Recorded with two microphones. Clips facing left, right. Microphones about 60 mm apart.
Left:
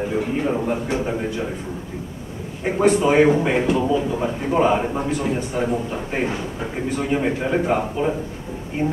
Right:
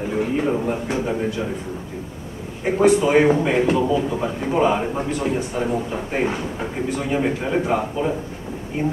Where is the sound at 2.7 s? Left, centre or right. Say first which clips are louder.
Even; centre.